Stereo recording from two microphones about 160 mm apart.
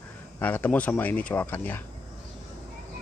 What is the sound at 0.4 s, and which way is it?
Speech, 10° left (ahead or behind).